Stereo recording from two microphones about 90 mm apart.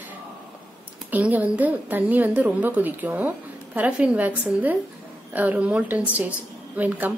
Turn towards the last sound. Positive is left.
turn(degrees=-20)  # may be behind; listen again after turning